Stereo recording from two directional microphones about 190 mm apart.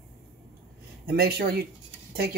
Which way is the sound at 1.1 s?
55° right (ahead or behind).